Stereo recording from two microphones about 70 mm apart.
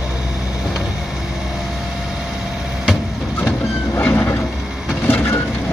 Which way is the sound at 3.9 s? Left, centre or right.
Left.